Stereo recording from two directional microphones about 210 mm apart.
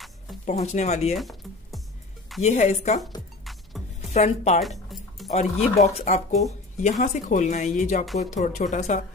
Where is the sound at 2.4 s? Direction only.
30° left (ahead or behind).